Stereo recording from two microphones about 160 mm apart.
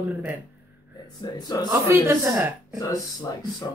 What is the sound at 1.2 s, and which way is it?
Speech, 25° left (ahead or behind).